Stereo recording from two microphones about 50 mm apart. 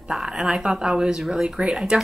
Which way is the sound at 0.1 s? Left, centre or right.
Centre.